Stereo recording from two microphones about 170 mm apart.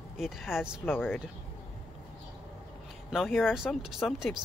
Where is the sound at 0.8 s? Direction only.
10° left (ahead or behind).